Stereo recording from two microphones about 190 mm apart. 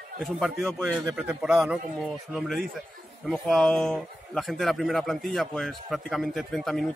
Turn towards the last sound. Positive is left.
turn(degrees=0)  # may be behind; listen again after turning